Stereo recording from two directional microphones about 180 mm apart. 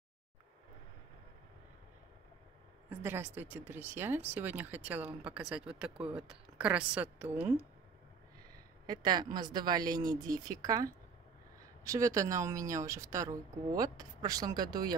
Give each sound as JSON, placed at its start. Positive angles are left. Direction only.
{"t": 2.9, "sound": "speech", "side_deg": -10}
{"t": 8.8, "sound": "a woman's voice", "side_deg": -25}